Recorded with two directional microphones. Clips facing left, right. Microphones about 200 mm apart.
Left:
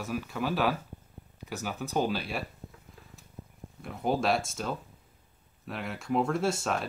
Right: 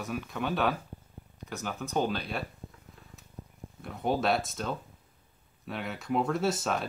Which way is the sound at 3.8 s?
Centre (ahead or behind).